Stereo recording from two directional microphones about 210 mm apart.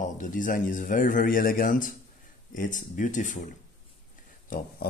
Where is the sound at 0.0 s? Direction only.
40° left (ahead or behind).